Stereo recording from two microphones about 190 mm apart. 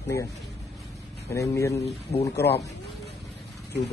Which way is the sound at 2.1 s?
35° left (ahead or behind).